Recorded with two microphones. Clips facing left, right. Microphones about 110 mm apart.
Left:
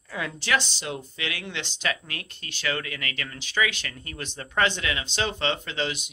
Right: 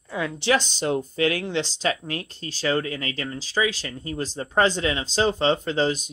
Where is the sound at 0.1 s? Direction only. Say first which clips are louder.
Right 4 dB; 25° right (ahead or behind).